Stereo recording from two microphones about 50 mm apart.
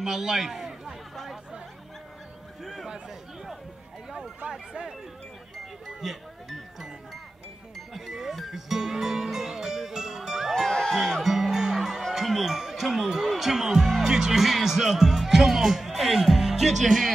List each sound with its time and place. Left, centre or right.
0.0 s a sound: centre
1.1 s chatter: centre
2.6 s a sound: centre
4.5 s speech: centre
6.0 s speech: centre
7.9 s music: centre